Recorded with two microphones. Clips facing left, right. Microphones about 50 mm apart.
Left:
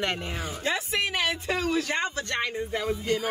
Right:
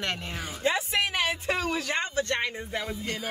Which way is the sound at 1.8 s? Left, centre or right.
Left.